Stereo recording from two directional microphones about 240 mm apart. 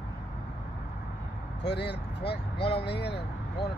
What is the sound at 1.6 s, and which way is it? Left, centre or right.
Speech, left.